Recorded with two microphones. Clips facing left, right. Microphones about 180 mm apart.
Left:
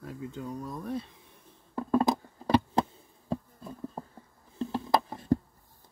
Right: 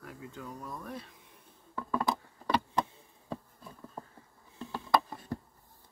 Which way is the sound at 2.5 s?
35° left (ahead or behind).